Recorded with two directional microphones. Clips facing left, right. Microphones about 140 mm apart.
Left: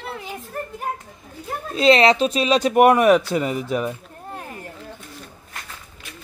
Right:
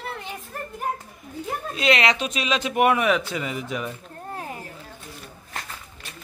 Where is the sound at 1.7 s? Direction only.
30° left (ahead or behind).